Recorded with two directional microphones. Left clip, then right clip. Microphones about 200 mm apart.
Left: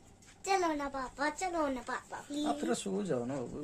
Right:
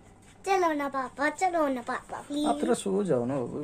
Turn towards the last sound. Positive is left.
turn(degrees=0)  # may be behind; listen again after turning